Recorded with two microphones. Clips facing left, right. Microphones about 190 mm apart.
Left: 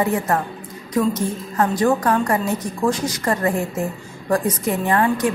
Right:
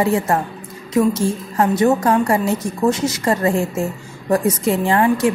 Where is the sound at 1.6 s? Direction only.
25° right (ahead or behind).